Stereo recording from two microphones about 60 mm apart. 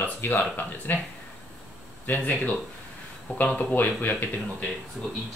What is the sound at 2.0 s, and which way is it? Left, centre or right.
Speech, left.